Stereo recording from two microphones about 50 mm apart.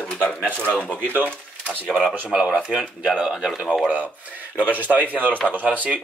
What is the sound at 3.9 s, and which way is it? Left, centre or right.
Speech, right.